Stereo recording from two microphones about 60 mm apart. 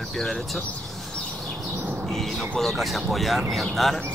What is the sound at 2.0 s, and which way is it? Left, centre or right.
Bird, centre.